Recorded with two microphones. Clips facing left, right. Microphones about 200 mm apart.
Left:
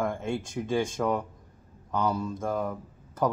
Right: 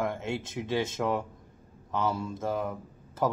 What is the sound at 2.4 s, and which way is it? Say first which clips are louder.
Speech: left 1 dB; centre (ahead or behind).